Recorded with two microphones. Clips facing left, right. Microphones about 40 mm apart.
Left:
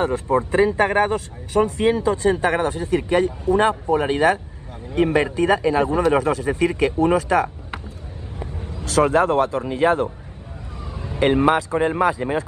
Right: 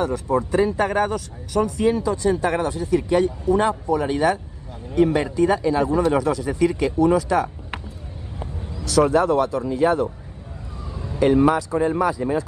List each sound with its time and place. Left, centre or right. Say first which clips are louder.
0.0 s a man's voice: left 2 dB; left
8.8 s a man's voice: even; left
12.2 s speech: right 1 dB; left